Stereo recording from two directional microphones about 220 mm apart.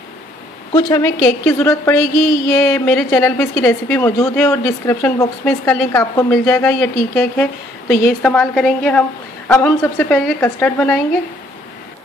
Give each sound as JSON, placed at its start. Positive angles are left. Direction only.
{"t": 0.7, "sound": "a woman's voice", "side_deg": 15}
{"t": 7.9, "sound": "a woman's voice", "side_deg": 40}
{"t": 8.2, "sound": "a woman's voice", "side_deg": 5}